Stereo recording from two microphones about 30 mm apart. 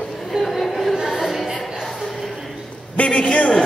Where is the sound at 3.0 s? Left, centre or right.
Left.